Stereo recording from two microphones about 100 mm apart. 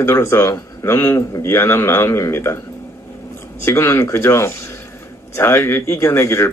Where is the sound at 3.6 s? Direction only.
25° left (ahead or behind).